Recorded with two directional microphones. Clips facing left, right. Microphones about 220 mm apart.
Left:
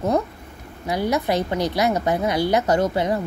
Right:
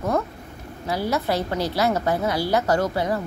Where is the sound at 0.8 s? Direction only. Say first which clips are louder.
Left 2 dB; 20° left (ahead or behind).